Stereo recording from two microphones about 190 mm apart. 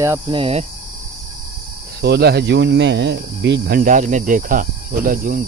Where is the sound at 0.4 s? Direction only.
30° right (ahead or behind).